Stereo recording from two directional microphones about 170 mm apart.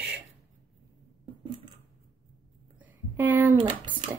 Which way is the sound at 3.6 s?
30° right (ahead or behind).